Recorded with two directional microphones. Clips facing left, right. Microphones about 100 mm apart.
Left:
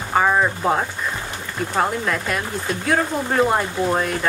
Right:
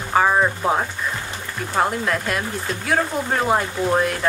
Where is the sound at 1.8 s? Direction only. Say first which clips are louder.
Right 1 dB; centre (ahead or behind).